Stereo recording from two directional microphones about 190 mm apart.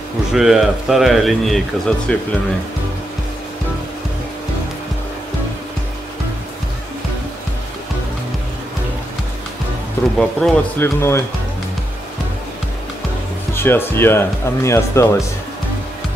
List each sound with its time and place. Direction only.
0.3 s speech: centre (ahead or behind)
10.1 s speech: 5° left (ahead or behind)
11.0 s speech: 15° left (ahead or behind)
13.6 s speech: 10° left (ahead or behind)